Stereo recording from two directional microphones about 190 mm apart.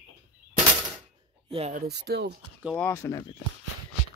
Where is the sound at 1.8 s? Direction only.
60° right (ahead or behind).